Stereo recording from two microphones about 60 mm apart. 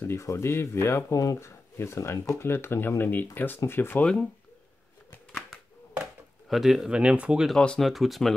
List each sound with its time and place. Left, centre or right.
0.0 s speech: left
1.1 s speech: left
4.0 s speech: centre
6.5 s speech: centre
6.9 s speech: centre
7.5 s speech: centre
7.8 s speech: centre